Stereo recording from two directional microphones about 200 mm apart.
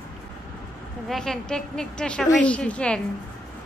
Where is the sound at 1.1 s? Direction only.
Centre (ahead or behind).